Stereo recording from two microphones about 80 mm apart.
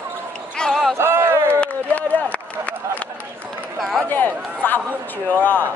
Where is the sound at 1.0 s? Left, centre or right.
Right.